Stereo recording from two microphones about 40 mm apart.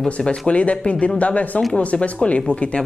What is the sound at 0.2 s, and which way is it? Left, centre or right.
Speech, left.